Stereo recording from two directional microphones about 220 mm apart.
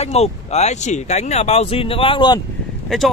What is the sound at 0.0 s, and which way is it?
Speech, 30° left (ahead or behind).